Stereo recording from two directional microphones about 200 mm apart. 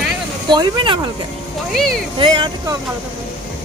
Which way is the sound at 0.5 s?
20° right (ahead or behind).